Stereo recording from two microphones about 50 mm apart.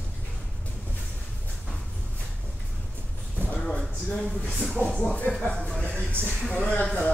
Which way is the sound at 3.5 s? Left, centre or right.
Centre.